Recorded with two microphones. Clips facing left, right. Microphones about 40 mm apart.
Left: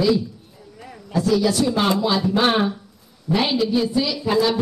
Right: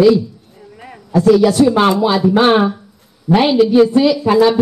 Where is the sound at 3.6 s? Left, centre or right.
Right.